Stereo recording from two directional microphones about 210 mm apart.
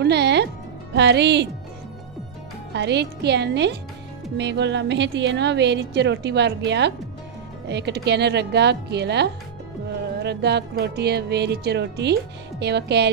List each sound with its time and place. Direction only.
0.0 s music: 55° right (ahead or behind)
0.9 s a woman's voice: 55° right (ahead or behind)
2.7 s a woman's voice: 55° right (ahead or behind)